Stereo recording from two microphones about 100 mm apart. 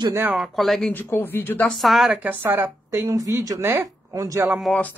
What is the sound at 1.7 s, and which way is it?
Speech, centre (ahead or behind).